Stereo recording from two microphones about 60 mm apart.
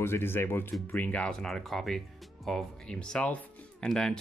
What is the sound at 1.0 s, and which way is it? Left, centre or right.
Speech, left.